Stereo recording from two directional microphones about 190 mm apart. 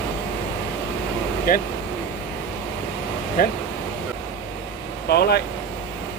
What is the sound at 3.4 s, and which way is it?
Speech, 50° left (ahead or behind).